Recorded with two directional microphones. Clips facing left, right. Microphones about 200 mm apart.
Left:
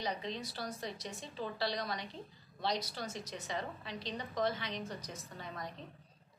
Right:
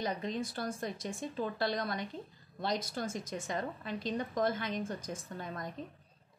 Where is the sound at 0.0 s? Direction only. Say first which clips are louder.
Right 4 dB; 50° right (ahead or behind).